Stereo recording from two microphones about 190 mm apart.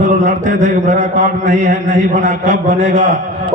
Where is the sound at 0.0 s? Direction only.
40° right (ahead or behind).